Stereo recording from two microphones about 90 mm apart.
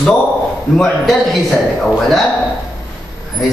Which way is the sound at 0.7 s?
5° left (ahead or behind).